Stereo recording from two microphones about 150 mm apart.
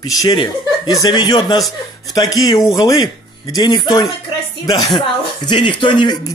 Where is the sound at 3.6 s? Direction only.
30° left (ahead or behind).